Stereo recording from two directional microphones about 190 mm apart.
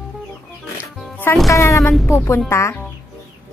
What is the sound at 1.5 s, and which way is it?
A child's voice, 15° left (ahead or behind).